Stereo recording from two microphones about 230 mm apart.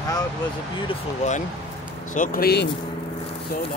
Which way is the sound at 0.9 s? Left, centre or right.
Left.